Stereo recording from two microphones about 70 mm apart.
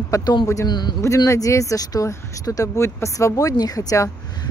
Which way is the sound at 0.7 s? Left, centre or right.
Left.